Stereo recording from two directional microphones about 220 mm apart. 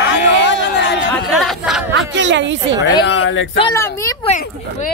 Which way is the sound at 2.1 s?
55° right (ahead or behind).